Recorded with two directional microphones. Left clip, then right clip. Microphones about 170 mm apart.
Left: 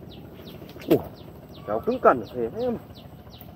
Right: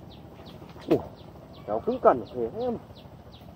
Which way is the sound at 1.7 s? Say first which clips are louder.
Left 2 dB; 25° left (ahead or behind).